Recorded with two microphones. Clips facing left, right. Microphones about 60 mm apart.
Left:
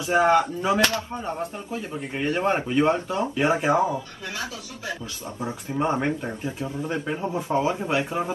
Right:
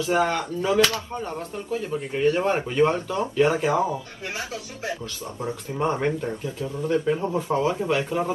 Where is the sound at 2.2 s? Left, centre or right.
Left.